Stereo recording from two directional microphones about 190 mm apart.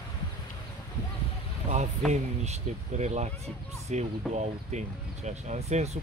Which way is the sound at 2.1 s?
35° right (ahead or behind).